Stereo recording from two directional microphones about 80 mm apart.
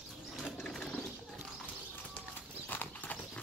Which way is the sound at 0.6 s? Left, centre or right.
Centre.